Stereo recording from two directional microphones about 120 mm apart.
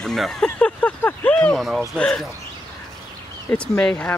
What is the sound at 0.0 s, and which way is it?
Speech, 5° left (ahead or behind).